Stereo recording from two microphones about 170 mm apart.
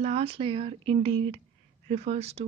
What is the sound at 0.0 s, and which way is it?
Speech, 35° right (ahead or behind).